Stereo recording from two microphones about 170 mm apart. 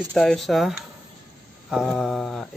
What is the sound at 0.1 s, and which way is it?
Speech, 5° left (ahead or behind).